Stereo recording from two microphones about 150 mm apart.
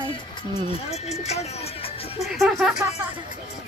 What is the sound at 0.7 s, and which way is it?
Speech, 45° left (ahead or behind).